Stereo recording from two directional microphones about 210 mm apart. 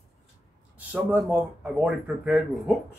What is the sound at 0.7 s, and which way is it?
Speech, 10° right (ahead or behind).